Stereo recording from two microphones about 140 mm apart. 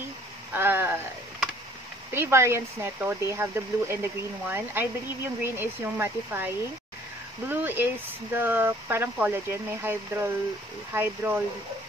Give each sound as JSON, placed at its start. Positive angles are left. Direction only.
{"t": 0.5, "sound": "speech", "side_deg": -15}
{"t": 2.1, "sound": "speech", "side_deg": -20}